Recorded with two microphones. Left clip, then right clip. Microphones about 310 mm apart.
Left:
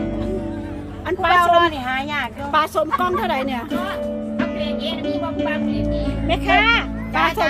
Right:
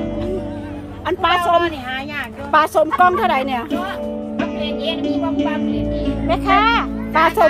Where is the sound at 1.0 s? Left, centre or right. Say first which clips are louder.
Even; centre.